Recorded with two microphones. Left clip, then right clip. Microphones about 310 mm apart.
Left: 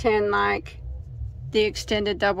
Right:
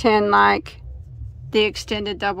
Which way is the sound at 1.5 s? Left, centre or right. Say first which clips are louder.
Right 2 dB; centre.